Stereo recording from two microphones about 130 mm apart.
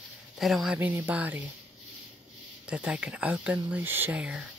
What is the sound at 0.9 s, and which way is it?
Speech, 15° right (ahead or behind).